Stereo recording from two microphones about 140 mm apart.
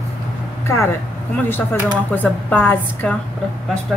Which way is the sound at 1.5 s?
15° left (ahead or behind).